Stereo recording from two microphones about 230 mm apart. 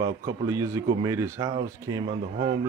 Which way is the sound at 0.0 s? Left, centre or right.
Centre.